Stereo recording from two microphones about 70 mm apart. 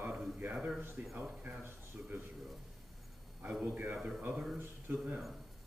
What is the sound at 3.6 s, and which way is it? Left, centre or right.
Speech, right.